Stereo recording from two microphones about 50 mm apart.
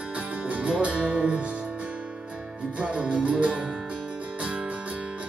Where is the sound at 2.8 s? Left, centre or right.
Right.